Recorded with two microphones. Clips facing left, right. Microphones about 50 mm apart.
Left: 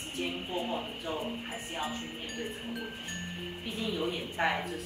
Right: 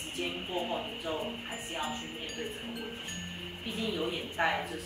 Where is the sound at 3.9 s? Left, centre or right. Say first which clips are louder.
Left 1 dB; centre.